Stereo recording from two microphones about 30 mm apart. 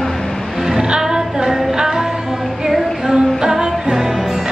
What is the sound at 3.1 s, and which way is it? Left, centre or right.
Music, right.